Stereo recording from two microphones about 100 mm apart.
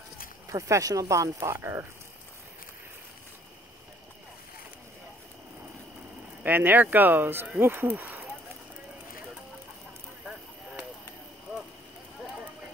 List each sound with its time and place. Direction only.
0.5 s speech: 35° right (ahead or behind)
6.4 s speech: 20° right (ahead or behind)